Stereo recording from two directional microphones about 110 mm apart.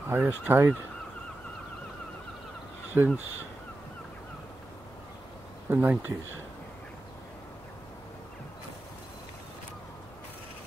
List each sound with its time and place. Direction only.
0.1 s fowl: 20° right (ahead or behind)
2.9 s fowl: 20° right (ahead or behind)
5.7 s fowl: 20° right (ahead or behind)